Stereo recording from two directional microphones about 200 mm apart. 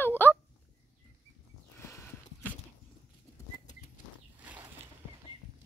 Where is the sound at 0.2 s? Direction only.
10° left (ahead or behind).